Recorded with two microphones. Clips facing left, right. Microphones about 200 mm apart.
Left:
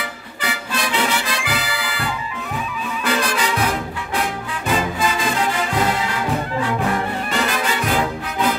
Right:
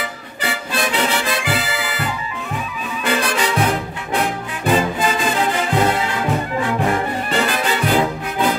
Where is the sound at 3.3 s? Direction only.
30° right (ahead or behind).